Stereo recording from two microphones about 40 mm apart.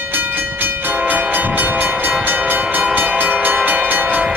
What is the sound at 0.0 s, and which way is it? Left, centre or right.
Train, right.